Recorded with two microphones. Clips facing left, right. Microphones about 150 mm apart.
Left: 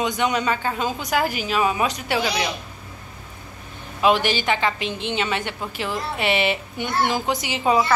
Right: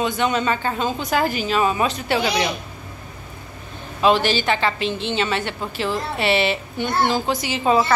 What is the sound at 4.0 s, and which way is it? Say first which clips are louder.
A woman's voice: right 2 dB; 15° left (ahead or behind).